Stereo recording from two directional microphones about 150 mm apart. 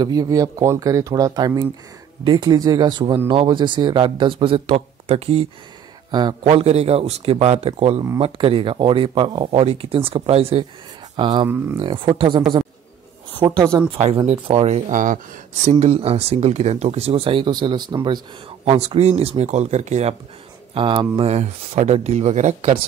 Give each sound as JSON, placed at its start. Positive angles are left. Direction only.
{"t": 0.0, "sound": "speech", "side_deg": -25}
{"t": 11.4, "sound": "speech", "side_deg": -15}
{"t": 11.8, "sound": "speech", "side_deg": -35}
{"t": 13.9, "sound": "speech", "side_deg": -45}
{"t": 14.9, "sound": "speech", "side_deg": -60}
{"t": 15.8, "sound": "speech", "side_deg": -45}
{"t": 18.7, "sound": "speech", "side_deg": -40}
{"t": 20.7, "sound": "speech", "side_deg": -30}
{"t": 21.3, "sound": "speech", "side_deg": -45}